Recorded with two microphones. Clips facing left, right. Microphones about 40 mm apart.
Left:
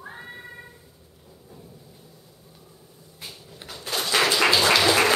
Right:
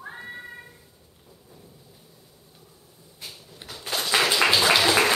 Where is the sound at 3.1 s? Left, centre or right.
Centre.